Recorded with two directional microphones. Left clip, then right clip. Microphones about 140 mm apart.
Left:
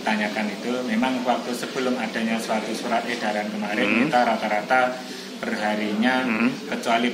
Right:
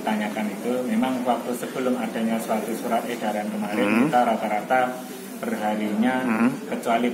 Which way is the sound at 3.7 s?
20° right (ahead or behind).